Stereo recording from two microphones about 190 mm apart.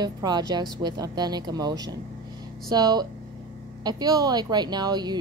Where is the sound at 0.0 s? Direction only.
20° right (ahead or behind).